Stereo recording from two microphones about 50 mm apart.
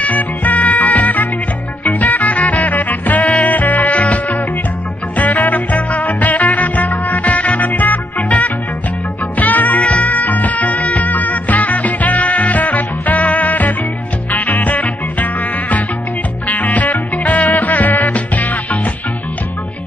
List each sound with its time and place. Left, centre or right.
0.0 s music: left
16.4 s music: left